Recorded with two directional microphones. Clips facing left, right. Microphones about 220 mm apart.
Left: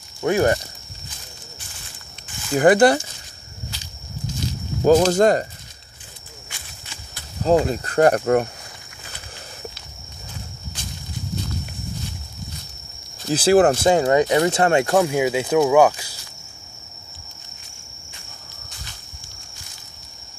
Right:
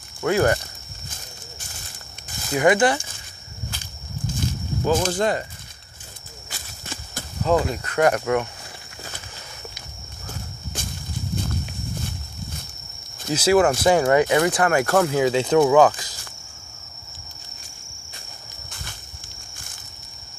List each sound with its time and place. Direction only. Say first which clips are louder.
0.2 s speech: left 1 dB; 20° left (ahead or behind)
2.5 s cricket: left 4 dB; 40° left (ahead or behind)
3.7 s a sound: right 1 dB; 50° right (ahead or behind)
5.0 s cricket: left 6 dB; 40° left (ahead or behind)
6.5 s a sound: right 5 dB; 45° right (ahead or behind)
7.4 s cricket: left 3 dB; 35° left (ahead or behind)
10.8 s a sound: right 3 dB; 50° right (ahead or behind)
13.3 s cricket: left 3 dB; 35° left (ahead or behind)
14.3 s speech: left 2 dB; 25° left (ahead or behind)